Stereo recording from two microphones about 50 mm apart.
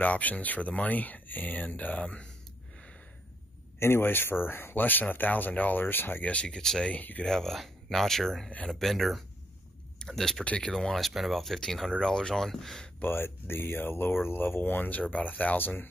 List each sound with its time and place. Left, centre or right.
0.0 s speech: left
3.8 s speech: left
6.2 s speech: left
6.9 s speech: left
7.2 s speech: centre
13.0 s speech: left